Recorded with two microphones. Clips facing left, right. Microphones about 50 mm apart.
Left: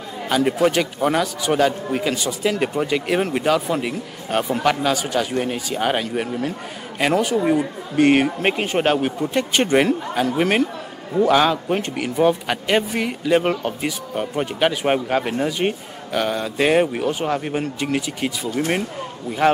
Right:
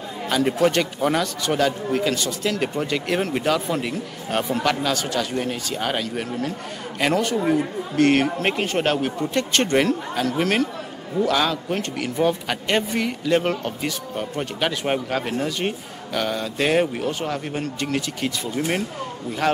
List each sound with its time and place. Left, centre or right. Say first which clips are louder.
0.3 s a man's voice: left 2 dB; centre